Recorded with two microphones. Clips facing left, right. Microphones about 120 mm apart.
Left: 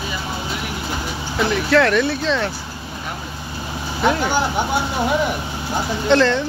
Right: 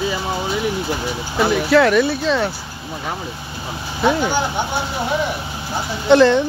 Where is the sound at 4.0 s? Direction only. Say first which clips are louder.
Right 1 dB; 10° right (ahead or behind).